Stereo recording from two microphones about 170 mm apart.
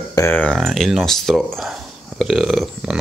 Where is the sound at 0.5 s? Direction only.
Centre (ahead or behind).